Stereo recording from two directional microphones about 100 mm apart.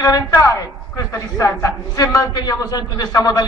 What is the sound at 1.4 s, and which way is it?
A man's voice, 35° left (ahead or behind).